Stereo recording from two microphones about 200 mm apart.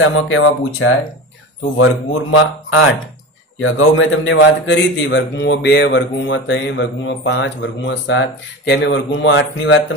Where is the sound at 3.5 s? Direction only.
90° left.